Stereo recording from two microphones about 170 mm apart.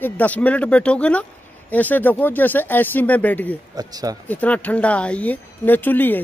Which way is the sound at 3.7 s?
20° right (ahead or behind).